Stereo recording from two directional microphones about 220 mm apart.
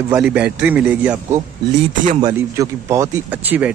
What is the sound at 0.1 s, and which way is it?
A man's voice, 5° right (ahead or behind).